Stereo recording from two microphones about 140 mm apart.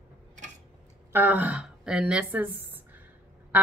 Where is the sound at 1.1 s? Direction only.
10° right (ahead or behind).